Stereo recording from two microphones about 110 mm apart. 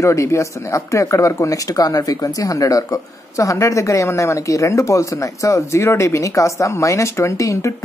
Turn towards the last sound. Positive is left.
turn(degrees=25)  # may be behind; listen again after turning